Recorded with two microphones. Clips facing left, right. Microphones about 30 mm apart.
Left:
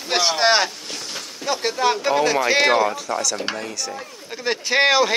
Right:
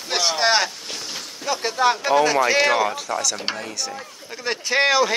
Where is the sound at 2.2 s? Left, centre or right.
Left.